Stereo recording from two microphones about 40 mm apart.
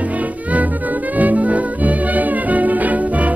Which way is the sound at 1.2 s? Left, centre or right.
Right.